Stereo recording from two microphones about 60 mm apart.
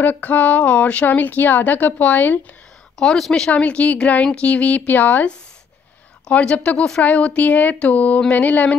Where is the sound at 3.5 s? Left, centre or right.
Left.